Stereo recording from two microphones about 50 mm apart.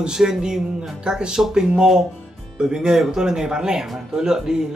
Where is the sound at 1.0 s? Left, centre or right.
Centre.